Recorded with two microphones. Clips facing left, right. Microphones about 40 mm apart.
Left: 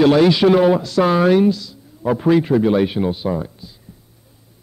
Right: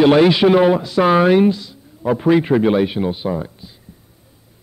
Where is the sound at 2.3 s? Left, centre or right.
Right.